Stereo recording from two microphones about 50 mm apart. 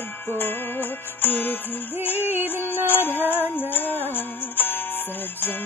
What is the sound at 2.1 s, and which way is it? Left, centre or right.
Music, right.